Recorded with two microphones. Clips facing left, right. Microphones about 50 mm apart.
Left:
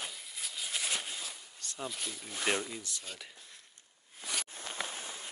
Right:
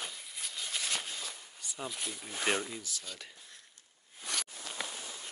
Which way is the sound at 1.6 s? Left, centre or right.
Centre.